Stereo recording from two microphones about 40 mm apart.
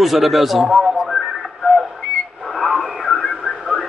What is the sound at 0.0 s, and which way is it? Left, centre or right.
A man's voice, centre.